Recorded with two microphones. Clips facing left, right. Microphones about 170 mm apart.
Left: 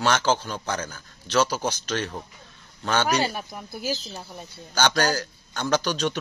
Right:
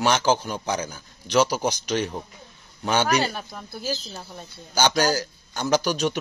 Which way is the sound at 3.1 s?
10° left (ahead or behind).